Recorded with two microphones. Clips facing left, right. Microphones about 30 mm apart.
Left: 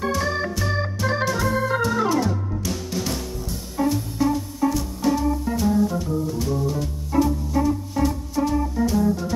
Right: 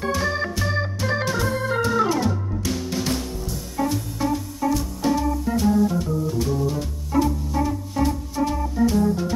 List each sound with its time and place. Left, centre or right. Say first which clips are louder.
0.1 s organ: even; centre
2.6 s music: right 4 dB; centre
3.7 s music: left 2 dB; centre